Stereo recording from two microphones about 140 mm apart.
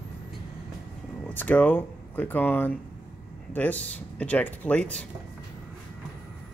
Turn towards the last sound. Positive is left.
turn(degrees=10)  # may be behind; listen again after turning